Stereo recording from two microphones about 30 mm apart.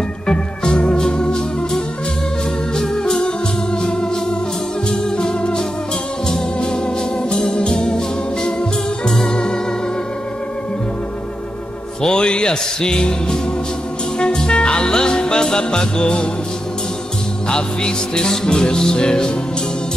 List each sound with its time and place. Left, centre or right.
0.3 s organ: left
2.8 s music: left
5.1 s music: left
7.2 s organ: left
9.0 s organ: left
12.0 s music: left
17.5 s music: left